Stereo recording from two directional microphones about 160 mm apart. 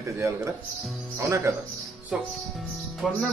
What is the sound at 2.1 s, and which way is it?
Speech, 5° right (ahead or behind).